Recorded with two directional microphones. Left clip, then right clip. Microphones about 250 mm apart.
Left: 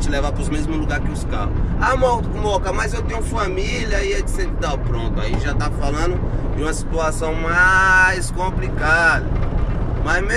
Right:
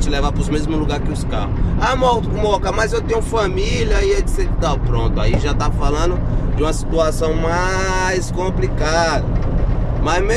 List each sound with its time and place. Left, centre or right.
0.1 s speech: centre
1.8 s speech: right
5.6 s speech: centre